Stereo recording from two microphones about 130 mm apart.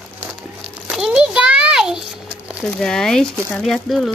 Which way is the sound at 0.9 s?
5° right (ahead or behind).